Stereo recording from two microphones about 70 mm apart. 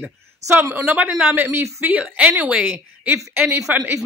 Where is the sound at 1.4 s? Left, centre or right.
Right.